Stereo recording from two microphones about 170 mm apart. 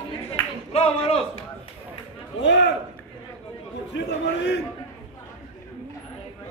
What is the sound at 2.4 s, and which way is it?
Speech, 90° left.